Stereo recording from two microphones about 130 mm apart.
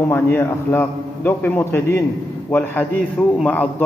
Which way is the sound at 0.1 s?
15° left (ahead or behind).